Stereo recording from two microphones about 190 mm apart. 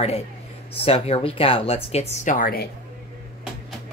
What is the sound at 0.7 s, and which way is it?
Speech, 30° left (ahead or behind).